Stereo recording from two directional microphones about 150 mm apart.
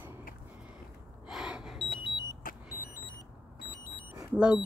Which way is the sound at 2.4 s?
70° left (ahead or behind).